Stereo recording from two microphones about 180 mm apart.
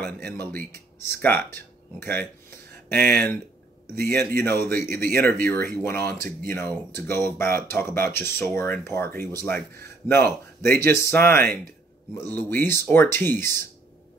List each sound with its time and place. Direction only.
0.0 s speech: 10° left (ahead or behind)